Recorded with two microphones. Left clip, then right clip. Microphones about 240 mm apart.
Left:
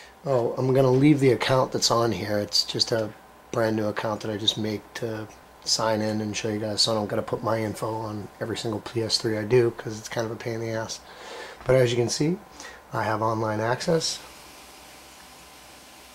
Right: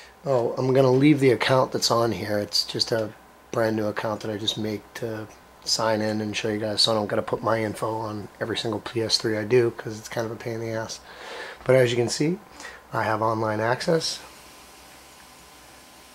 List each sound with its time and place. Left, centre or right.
0.2 s speech: centre
7.8 s speech: right
8.8 s speech: centre
12.5 s a sound: centre
13.5 s speech: centre